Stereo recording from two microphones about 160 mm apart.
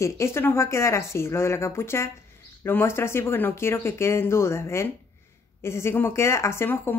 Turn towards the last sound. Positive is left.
turn(degrees=15)  # may be behind; listen again after turning